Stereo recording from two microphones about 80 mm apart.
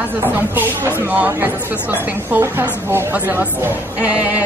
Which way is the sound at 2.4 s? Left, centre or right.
Right.